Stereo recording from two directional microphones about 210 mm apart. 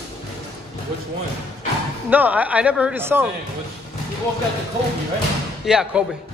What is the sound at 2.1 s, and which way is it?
A man's voice, 5° right (ahead or behind).